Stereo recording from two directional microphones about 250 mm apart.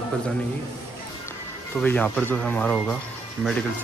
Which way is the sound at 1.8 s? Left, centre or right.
Centre.